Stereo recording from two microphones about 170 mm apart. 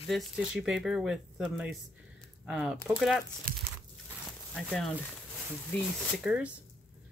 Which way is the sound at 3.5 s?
55° right (ahead or behind).